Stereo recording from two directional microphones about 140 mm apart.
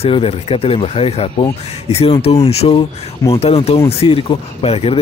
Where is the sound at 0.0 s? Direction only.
45° left (ahead or behind).